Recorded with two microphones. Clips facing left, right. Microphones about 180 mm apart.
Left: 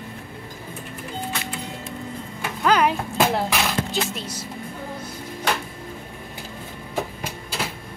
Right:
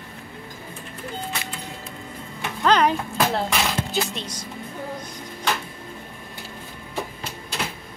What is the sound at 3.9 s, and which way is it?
Speech, centre (ahead or behind).